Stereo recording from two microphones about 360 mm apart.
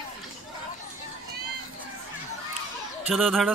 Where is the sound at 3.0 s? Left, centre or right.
Centre.